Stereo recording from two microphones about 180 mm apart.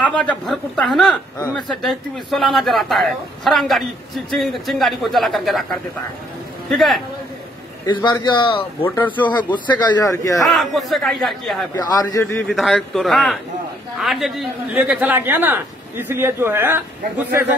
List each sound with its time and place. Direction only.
0.0 s speech: 5° left (ahead or behind)
7.8 s a man's voice: 25° left (ahead or behind)
8.8 s speech: 10° left (ahead or behind)
9.2 s speech: 25° left (ahead or behind)
10.4 s speech: centre (ahead or behind)
11.7 s speech: 20° left (ahead or behind)
12.4 s a man's voice: centre (ahead or behind)